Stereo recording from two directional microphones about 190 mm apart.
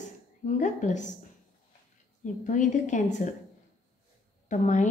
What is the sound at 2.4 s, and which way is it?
Speech, 40° left (ahead or behind).